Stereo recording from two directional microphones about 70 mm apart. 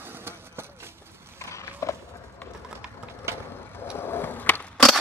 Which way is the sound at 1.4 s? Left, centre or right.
Left.